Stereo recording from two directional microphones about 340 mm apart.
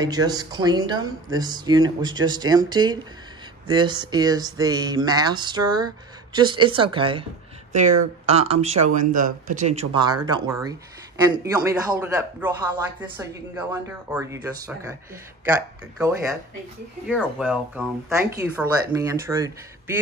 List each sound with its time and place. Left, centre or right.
0.0 s speech: centre
17.1 s speech: centre